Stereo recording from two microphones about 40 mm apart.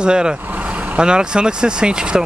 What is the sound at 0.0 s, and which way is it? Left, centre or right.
Speech, right.